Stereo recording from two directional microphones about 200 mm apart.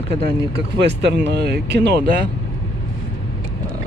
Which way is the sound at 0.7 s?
60° right (ahead or behind).